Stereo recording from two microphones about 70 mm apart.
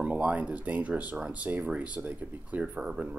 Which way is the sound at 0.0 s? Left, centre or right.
Centre.